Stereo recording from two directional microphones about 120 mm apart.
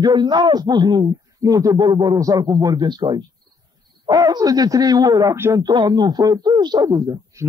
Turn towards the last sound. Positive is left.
turn(degrees=-30)  # may be behind; listen again after turning